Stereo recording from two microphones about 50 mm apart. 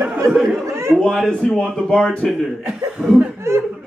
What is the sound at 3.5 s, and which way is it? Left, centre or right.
Speech, right.